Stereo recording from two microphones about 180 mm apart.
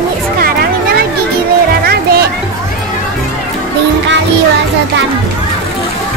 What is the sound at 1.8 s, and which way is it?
Music, 60° right (ahead or behind).